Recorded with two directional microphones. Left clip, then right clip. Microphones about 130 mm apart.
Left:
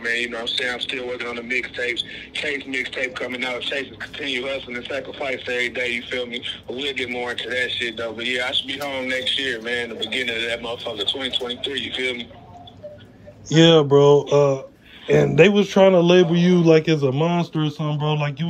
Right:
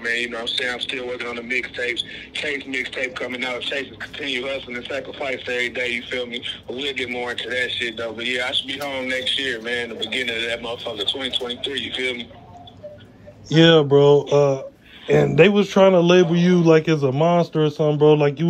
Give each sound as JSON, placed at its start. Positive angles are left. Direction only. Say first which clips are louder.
{"t": 0.0, "sound": "speech", "louder": "even", "side_deg": 15}
{"t": 13.7, "sound": "a man's voice", "louder": "even", "side_deg": 5}